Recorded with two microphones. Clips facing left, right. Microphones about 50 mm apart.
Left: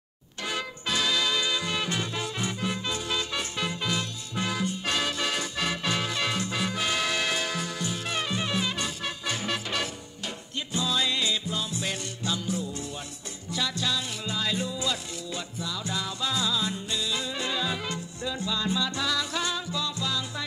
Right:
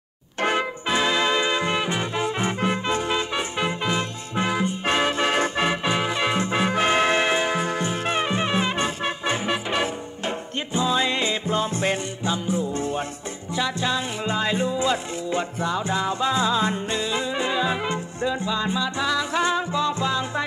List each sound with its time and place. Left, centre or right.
0.4 s music: right
12.2 s music: right